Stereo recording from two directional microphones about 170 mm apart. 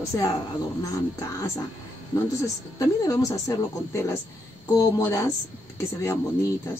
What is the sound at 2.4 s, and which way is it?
A woman's voice, 20° left (ahead or behind).